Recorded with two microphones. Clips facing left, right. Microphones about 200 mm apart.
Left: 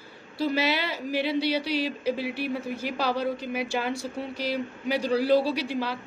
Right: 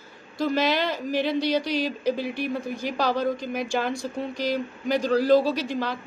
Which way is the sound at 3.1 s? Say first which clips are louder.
Right 3 dB; 45° right (ahead or behind).